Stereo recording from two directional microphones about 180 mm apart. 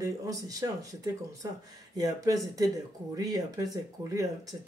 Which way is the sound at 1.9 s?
20° right (ahead or behind).